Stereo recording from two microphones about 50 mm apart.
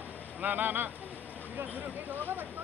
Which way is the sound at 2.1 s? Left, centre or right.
Right.